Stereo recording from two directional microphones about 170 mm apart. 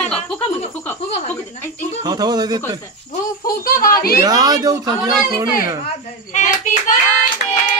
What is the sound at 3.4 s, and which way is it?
Speech, 60° left (ahead or behind).